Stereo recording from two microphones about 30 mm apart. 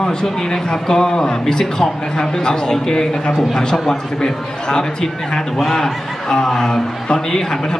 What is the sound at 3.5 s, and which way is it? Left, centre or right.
Speech, centre.